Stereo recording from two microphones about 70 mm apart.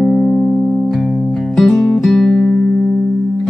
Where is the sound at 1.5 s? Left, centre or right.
Centre.